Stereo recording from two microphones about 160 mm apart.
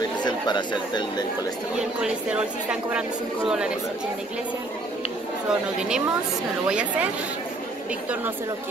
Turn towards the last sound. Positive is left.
turn(degrees=-5)  # may be behind; listen again after turning